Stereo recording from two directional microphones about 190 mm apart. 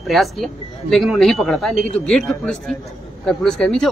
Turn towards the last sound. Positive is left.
turn(degrees=5)  # may be behind; listen again after turning